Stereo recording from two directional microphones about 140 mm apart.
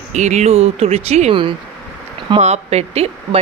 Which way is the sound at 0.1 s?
55° right (ahead or behind).